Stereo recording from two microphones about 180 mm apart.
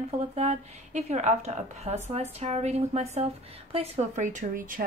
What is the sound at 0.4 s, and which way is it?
A woman's voice, 35° right (ahead or behind).